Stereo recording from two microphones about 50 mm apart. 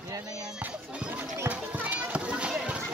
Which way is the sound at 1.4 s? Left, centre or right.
Right.